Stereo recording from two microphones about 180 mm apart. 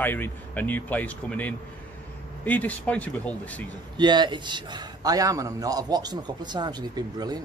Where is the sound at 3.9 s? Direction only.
25° right (ahead or behind).